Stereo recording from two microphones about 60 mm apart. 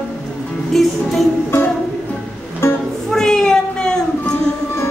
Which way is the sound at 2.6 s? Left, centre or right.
Left.